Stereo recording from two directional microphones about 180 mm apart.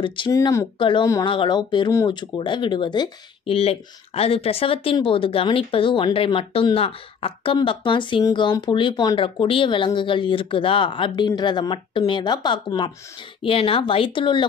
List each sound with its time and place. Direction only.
0.0 s speech: 25° left (ahead or behind)
0.7 s speech: 25° left (ahead or behind)
1.0 s speech: 15° left (ahead or behind)